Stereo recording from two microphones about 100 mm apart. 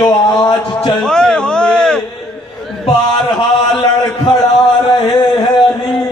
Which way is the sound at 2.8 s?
50° left (ahead or behind).